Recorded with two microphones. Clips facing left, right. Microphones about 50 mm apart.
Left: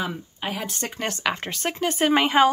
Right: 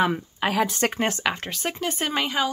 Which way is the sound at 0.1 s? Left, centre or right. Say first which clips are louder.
Right 6 dB; right.